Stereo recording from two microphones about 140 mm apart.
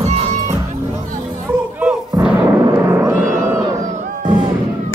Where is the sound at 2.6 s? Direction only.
25° right (ahead or behind).